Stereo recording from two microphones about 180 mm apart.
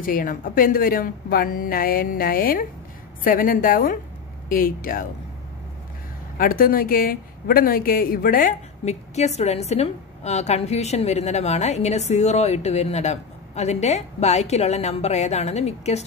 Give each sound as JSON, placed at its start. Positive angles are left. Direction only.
{"t": 0.0, "sound": "a woman's voice", "side_deg": 50}
{"t": 6.3, "sound": "a woman's voice", "side_deg": 50}
{"t": 8.8, "sound": "a woman's voice", "side_deg": 40}